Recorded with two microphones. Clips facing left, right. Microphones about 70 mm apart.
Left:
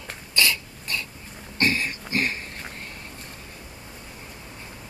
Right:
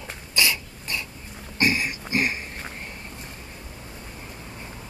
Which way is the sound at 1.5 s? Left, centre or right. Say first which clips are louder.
Right 1 dB; centre.